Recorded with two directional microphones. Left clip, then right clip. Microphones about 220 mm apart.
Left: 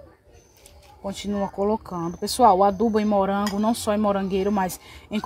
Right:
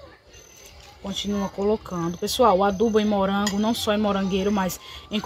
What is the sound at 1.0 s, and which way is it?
Speech, 35° left (ahead or behind).